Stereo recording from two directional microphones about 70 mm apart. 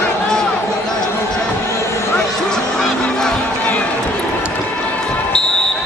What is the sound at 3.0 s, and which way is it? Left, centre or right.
Run, centre.